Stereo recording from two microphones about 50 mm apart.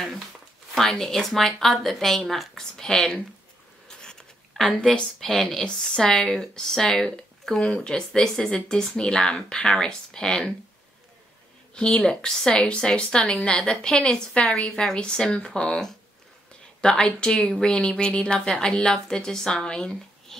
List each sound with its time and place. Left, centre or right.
0.7 s speech: centre
2.8 s a woman's voice: centre
4.0 s a sound: centre
4.7 s a woman's voice: centre
5.9 s a woman's voice: centre
11.7 s a woman's voice: left